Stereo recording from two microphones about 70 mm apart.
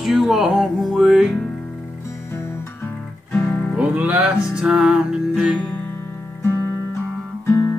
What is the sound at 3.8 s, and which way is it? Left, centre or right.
Music, right.